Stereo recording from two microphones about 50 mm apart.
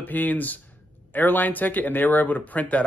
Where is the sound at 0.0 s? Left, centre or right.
Left.